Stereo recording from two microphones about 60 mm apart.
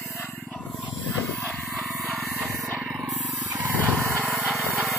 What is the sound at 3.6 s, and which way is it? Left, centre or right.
Vehicle, right.